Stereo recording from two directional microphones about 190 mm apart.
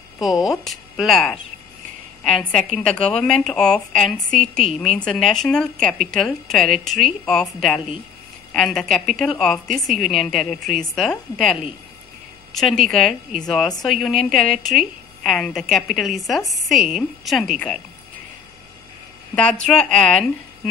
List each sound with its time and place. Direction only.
0.2 s speech: centre (ahead or behind)
19.6 s speech: 5° left (ahead or behind)